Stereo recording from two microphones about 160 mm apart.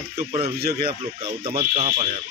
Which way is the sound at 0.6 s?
75° right (ahead or behind).